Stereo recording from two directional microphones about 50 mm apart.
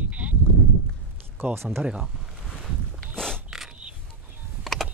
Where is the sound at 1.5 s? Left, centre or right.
Right.